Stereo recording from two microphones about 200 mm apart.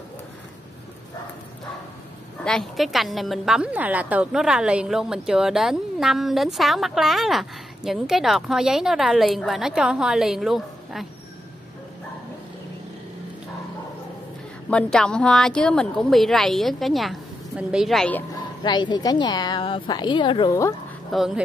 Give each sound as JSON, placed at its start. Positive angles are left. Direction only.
{"t": 2.4, "sound": "a woman's voice", "side_deg": 0}
{"t": 14.7, "sound": "a woman's voice", "side_deg": 5}
{"t": 18.6, "sound": "a woman's voice", "side_deg": 20}
{"t": 21.1, "sound": "a woman's voice", "side_deg": 0}